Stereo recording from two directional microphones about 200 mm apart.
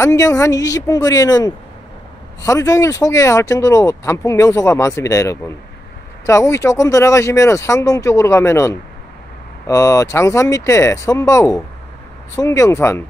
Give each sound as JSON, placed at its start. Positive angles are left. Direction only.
{"t": 0.0, "sound": "speech", "side_deg": 15}